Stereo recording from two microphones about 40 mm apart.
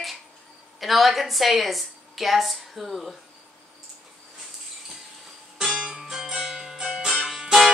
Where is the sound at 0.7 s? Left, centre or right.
Centre.